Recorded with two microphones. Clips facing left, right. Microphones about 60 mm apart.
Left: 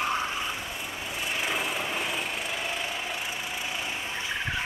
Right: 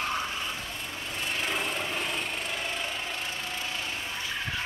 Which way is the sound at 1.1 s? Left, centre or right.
Centre.